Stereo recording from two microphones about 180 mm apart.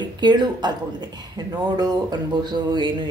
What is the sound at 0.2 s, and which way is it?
Speech, 25° right (ahead or behind).